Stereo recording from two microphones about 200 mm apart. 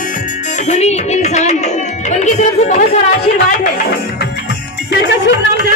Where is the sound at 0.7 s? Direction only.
35° left (ahead or behind).